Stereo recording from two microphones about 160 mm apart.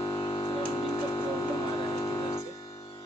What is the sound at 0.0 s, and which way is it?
Music, 25° left (ahead or behind).